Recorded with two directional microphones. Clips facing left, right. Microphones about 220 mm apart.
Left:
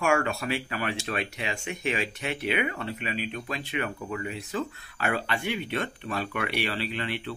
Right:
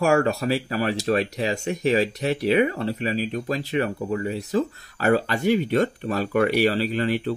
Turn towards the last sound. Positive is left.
turn(degrees=-40)  # may be behind; listen again after turning